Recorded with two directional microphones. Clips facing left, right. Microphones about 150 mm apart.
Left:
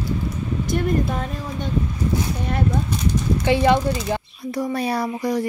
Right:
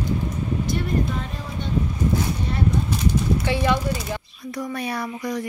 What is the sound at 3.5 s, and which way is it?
Speech, 30° left (ahead or behind).